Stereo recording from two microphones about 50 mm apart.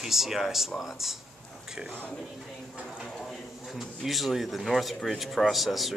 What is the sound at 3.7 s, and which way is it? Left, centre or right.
Speech, centre.